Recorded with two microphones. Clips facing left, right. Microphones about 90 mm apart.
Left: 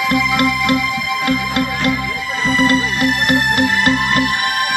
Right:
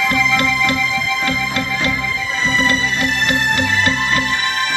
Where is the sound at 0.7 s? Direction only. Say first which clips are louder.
Left 2 dB; 55° left (ahead or behind).